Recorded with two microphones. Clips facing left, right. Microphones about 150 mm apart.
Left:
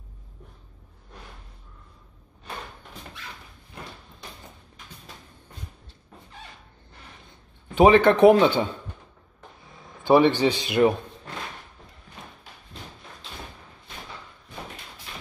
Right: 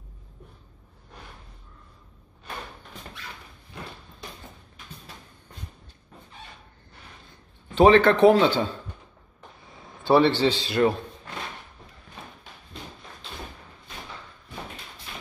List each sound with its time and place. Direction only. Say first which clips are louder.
7.7 s a man's voice: even; 10° left (ahead or behind)
10.0 s a man's voice: left 1 dB; 15° left (ahead or behind)